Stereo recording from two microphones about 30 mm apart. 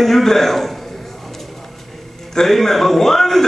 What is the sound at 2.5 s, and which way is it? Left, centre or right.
Speech, centre.